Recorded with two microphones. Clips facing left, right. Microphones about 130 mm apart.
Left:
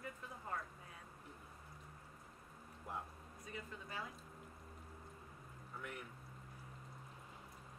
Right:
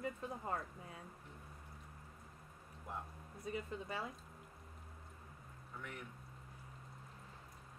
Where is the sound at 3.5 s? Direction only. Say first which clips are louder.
Right 6 dB; 25° right (ahead or behind).